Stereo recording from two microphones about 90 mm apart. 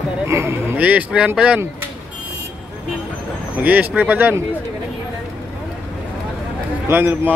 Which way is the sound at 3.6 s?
15° right (ahead or behind).